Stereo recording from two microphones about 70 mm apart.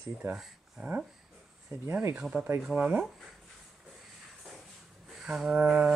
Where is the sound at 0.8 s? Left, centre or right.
Centre.